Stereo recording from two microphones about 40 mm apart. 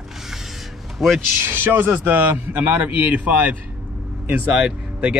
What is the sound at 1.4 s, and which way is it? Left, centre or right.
Speech, right.